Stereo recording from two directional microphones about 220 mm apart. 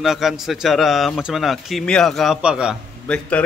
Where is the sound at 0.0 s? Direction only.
Centre (ahead or behind).